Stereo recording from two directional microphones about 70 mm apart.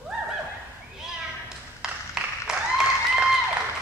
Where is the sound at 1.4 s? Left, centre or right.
Centre.